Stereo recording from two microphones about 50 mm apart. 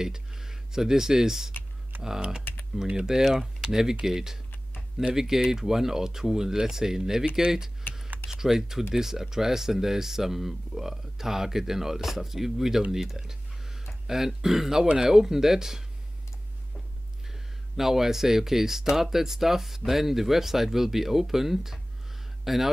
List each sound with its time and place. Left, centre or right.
0.0 s speech: centre
12.9 s a sound: centre
14.0 s speech: centre
17.3 s speech: centre